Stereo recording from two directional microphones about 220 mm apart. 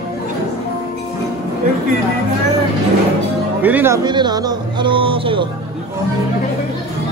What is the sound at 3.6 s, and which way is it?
Speech, 10° right (ahead or behind).